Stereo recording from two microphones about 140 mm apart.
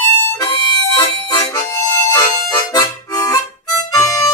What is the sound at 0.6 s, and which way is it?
Harmonica, 30° left (ahead or behind).